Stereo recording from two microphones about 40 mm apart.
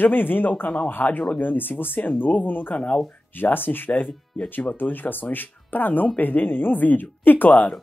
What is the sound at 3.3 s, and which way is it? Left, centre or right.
Speech, left.